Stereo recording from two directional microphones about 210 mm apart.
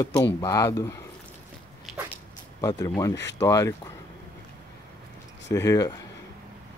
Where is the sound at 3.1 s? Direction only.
55° left (ahead or behind).